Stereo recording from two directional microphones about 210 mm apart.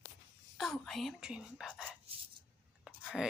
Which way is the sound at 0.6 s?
Centre (ahead or behind).